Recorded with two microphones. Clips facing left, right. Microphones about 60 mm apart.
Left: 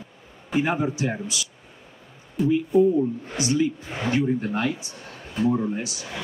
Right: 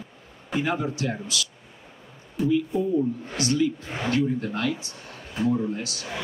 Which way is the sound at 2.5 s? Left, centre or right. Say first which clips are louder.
Left 5 dB; left.